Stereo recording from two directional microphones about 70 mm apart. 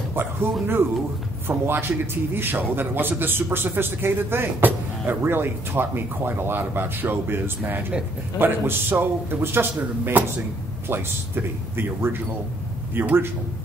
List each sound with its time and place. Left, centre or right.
0.1 s a man's voice: right